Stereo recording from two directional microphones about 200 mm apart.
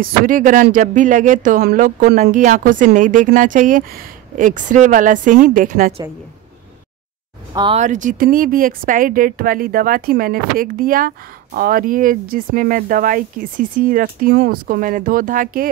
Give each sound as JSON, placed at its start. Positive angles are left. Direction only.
{"t": 0.0, "sound": "speech", "side_deg": -40}
{"t": 7.5, "sound": "speech", "side_deg": -25}
{"t": 7.8, "sound": "speech", "side_deg": -40}